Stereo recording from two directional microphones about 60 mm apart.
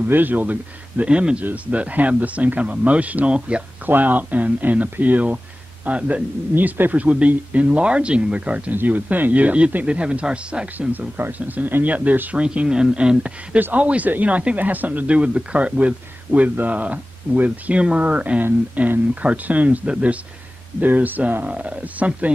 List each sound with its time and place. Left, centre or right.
0.1 s speech: right
1.0 s speech: centre
3.8 s speech: right
6.5 s speech: right
10.9 s speech: right
18.4 s speech: right
21.5 s speech: centre